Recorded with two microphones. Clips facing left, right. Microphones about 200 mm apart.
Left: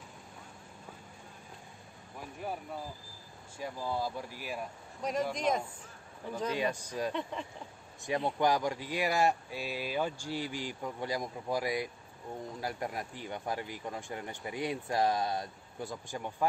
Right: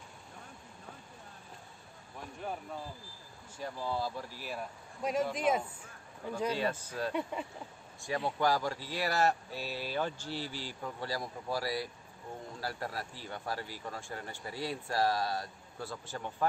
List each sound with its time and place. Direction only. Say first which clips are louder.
2.1 s speech: left 1 dB; 5° left (ahead or behind)
5.0 s speech: right 1 dB; 5° right (ahead or behind)
6.5 s speech: left 1 dB; 15° left (ahead or behind)
7.1 s speech: right 4 dB; 10° right (ahead or behind)
8.4 s speech: left 1 dB; 20° left (ahead or behind)